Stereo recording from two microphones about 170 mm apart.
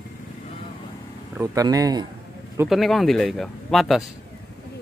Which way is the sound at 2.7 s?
Centre (ahead or behind).